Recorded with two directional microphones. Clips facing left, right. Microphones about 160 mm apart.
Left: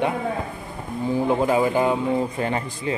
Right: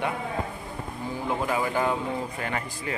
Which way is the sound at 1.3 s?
25° left (ahead or behind).